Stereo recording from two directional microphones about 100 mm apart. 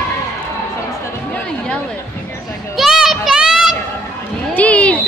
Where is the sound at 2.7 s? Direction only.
Centre (ahead or behind).